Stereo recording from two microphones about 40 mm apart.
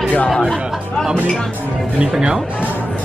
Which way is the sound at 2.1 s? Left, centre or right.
Centre.